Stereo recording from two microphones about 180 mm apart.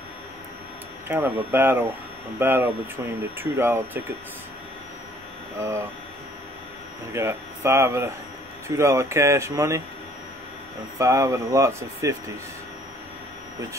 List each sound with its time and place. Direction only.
1.0 s speech: 10° right (ahead or behind)
5.6 s speech: 15° right (ahead or behind)
7.1 s speech: 15° right (ahead or behind)
11.0 s speech: 15° right (ahead or behind)